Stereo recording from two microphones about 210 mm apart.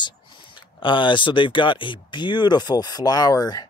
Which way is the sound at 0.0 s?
20° left (ahead or behind).